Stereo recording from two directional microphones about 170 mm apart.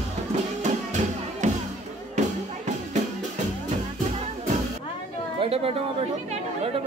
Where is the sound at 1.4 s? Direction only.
45° right (ahead or behind).